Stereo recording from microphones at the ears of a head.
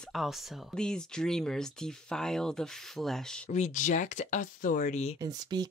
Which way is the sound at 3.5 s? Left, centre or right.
Left.